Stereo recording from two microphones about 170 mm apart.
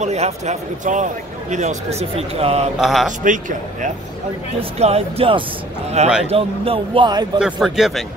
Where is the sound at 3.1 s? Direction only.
45° right (ahead or behind); by 7.2 s 25° right (ahead or behind).